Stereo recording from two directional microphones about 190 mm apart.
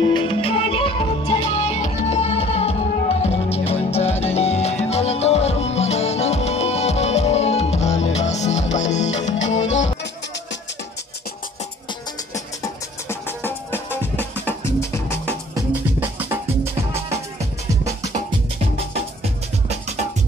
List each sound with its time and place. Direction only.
0.1 s music: 30° left (ahead or behind)
12.6 s music: 10° left (ahead or behind)
15.5 s music: 10° right (ahead or behind)